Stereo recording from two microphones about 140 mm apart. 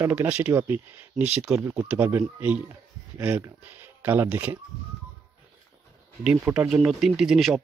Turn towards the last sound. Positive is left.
turn(degrees=0)  # may be behind; listen again after turning